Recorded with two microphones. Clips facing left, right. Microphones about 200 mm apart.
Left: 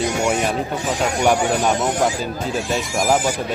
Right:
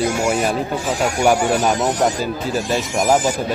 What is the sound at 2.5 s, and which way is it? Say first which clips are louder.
Speech: right 2 dB; centre (ahead or behind).